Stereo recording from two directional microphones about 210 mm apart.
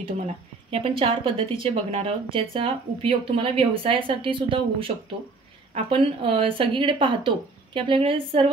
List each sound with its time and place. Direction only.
0.7 s speech: 25° right (ahead or behind)